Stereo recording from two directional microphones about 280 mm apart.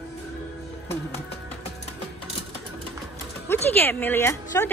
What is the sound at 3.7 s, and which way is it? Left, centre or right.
Speech, centre.